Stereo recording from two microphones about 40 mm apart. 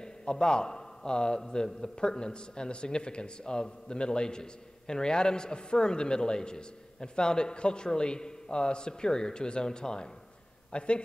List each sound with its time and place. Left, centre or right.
0.0 s a man's voice: left